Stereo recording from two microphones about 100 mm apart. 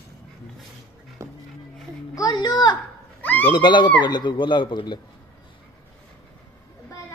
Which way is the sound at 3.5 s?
50° left (ahead or behind).